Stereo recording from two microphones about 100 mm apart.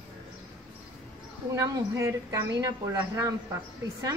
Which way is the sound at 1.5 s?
30° right (ahead or behind).